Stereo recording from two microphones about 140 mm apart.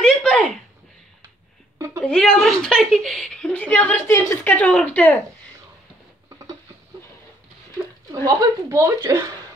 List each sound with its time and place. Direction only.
0.0 s a sound: 5° left (ahead or behind)
2.0 s a woman's voice: 5° left (ahead or behind)
8.3 s speech: 25° right (ahead or behind)